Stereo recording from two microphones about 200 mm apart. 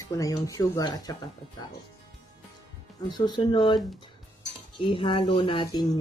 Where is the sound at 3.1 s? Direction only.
20° left (ahead or behind).